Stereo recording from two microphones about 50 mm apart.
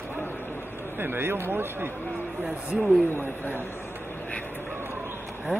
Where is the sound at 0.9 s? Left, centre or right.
Right.